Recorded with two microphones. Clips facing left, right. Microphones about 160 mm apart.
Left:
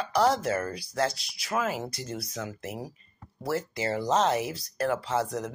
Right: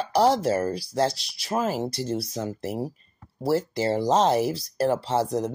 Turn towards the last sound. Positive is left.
turn(degrees=-35)  # may be behind; listen again after turning